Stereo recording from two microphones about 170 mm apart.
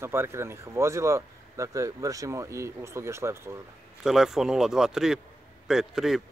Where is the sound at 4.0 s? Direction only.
Centre (ahead or behind).